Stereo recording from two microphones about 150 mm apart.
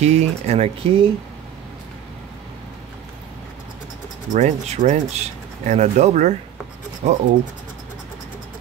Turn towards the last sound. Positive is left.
turn(degrees=-50)  # may be behind; listen again after turning